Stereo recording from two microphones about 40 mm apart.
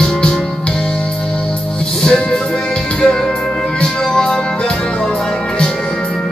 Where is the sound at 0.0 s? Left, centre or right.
Centre.